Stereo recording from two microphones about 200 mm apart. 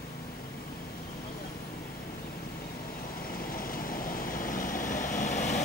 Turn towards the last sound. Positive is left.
turn(degrees=35)  # may be behind; listen again after turning